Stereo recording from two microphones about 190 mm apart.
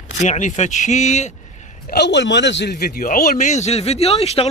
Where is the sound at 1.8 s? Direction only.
60° left (ahead or behind).